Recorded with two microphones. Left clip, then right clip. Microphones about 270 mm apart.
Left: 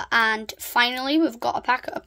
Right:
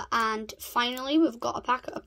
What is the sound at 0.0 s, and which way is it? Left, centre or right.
Speech, left.